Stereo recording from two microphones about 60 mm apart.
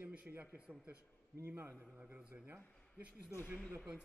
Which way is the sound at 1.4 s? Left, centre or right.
Right.